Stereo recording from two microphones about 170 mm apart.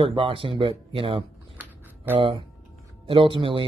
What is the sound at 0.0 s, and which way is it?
A man's voice, 30° right (ahead or behind).